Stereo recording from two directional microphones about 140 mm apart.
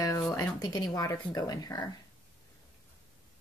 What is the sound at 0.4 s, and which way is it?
Speech, 25° left (ahead or behind).